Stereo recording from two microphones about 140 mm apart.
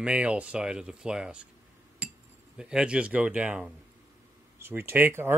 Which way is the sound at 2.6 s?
5° right (ahead or behind).